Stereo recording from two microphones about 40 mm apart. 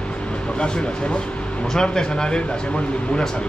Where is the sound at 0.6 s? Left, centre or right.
Left.